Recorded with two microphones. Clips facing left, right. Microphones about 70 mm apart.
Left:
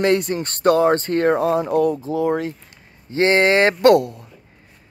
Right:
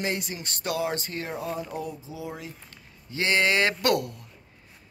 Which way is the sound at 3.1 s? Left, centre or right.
Left.